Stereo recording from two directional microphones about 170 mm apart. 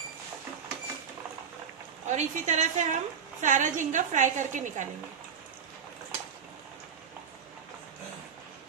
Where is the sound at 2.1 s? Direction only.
45° right (ahead or behind).